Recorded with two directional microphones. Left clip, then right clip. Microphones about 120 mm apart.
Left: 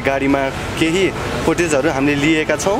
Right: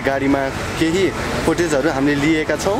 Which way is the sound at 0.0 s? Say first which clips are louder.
Left 1 dB; 10° left (ahead or behind).